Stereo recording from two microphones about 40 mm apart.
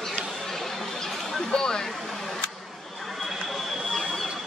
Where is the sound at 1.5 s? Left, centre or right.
Centre.